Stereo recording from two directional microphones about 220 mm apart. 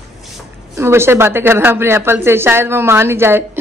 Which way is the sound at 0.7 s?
10° right (ahead or behind).